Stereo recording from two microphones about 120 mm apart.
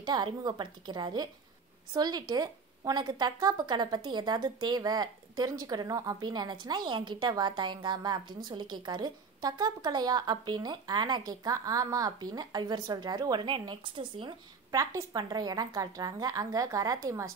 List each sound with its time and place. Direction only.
0.0 s speech: 35° right (ahead or behind)
14.7 s a woman's voice: 25° right (ahead or behind)